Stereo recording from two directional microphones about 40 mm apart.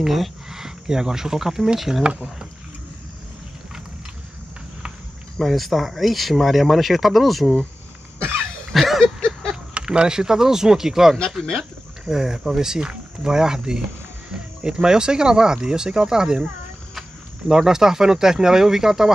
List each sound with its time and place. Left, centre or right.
0.0 s speech: centre
5.4 s speech: centre
8.7 s a sound: centre
9.2 s a sound: centre
9.8 s speech: right
17.5 s speech: centre